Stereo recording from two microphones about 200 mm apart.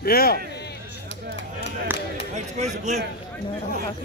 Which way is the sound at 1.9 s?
10° right (ahead or behind).